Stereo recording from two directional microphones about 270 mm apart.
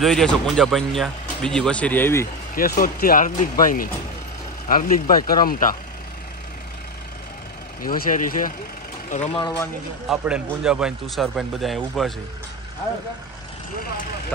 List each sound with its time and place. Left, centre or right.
0.0 s speech: centre
2.5 s speech: left
7.8 s speech: left
9.3 s speech: centre
10.0 s speech: centre